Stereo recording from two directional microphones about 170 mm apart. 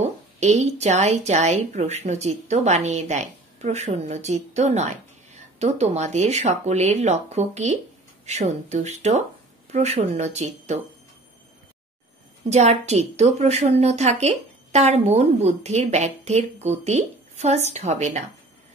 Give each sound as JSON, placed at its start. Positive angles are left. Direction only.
{"t": 0.0, "sound": "a woman's voice", "side_deg": -40}
{"t": 12.4, "sound": "a woman's voice", "side_deg": -40}